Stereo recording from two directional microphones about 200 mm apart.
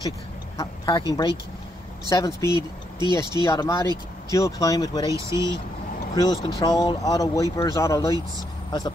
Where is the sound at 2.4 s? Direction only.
20° right (ahead or behind).